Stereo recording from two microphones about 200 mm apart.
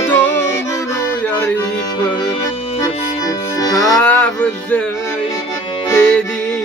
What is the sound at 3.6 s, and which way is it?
Music, 15° left (ahead or behind).